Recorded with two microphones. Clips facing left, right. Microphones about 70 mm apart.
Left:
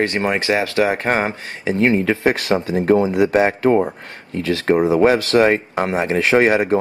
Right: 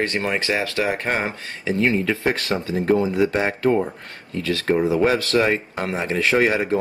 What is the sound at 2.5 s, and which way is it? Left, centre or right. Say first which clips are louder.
Speech: left 6 dB; left.